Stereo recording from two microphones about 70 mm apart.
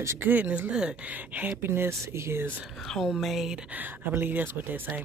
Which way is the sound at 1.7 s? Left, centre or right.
Right.